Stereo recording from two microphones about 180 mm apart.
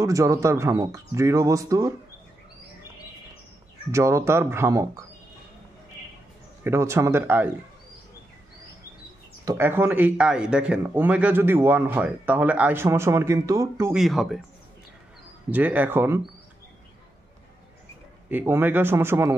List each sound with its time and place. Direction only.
0.0 s speech: 15° right (ahead or behind)
3.9 s speech: 15° right (ahead or behind)
6.6 s speech: 15° right (ahead or behind)
9.4 s speech: 15° right (ahead or behind)
13.9 s speech: centre (ahead or behind)
15.5 s speech: 10° right (ahead or behind)
18.3 s speech: 15° right (ahead or behind)